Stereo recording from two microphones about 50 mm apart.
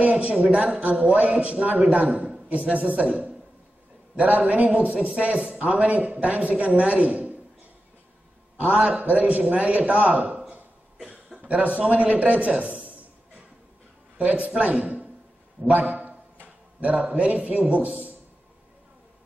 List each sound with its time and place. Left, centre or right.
0.0 s a man's voice: right
8.5 s a man's voice: right
14.1 s a man's voice: right